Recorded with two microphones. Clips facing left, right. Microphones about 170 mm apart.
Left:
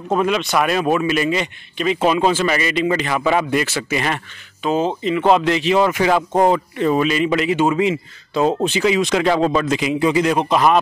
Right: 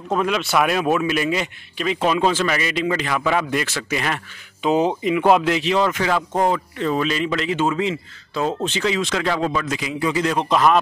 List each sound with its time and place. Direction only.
0.1 s a man's voice: centre (ahead or behind)
4.6 s a man's voice: 15° right (ahead or behind); by 10.8 s 5° left (ahead or behind)